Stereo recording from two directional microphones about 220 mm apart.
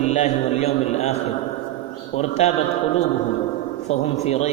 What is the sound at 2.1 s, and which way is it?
Speech, 30° left (ahead or behind).